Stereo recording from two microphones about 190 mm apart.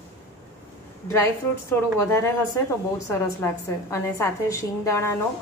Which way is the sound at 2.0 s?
15° left (ahead or behind).